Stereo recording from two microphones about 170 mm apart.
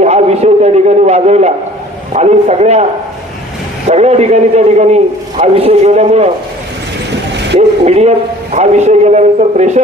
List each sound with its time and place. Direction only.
0.0 s a sound: 40° right (ahead or behind)
2.1 s a man's voice: 45° right (ahead or behind)
3.9 s a man's voice: 40° right (ahead or behind)
7.8 s a man's voice: 35° right (ahead or behind)